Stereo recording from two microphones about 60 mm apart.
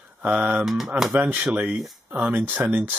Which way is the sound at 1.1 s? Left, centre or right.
Right.